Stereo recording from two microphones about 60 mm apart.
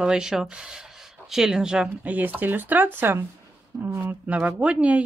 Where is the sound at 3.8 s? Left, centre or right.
Right.